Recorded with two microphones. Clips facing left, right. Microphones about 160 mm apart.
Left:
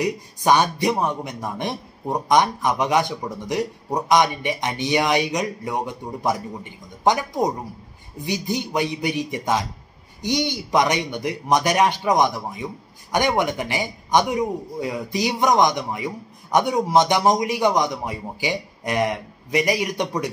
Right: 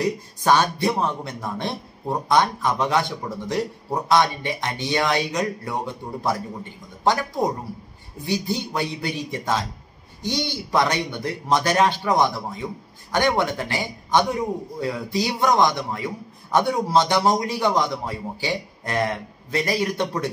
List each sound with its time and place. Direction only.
0.0 s a man's voice: 15° left (ahead or behind)